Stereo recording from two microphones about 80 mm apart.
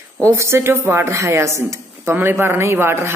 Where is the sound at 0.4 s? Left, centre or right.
Right.